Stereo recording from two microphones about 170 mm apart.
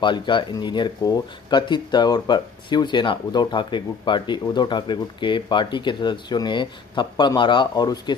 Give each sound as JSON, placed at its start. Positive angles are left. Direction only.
{"t": 0.0, "sound": "speech", "side_deg": 30}